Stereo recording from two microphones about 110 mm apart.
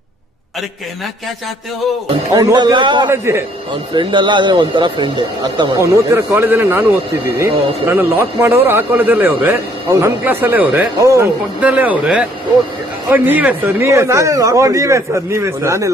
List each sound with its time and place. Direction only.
2.3 s speech: 40° right (ahead or behind)
3.1 s speech: 25° right (ahead or behind)
3.9 s speech: 45° right (ahead or behind)
5.8 s speech: 20° right (ahead or behind)